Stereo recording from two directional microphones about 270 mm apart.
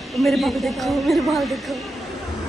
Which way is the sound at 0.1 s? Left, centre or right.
Centre.